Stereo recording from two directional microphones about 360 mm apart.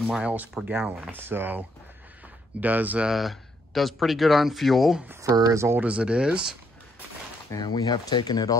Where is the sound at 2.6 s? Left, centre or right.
Centre.